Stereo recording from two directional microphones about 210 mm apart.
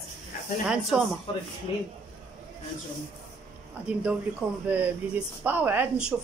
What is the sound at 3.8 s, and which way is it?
A woman's voice, 5° right (ahead or behind).